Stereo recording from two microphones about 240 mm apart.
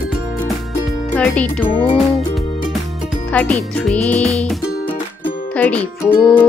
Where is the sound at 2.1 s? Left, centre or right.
Centre.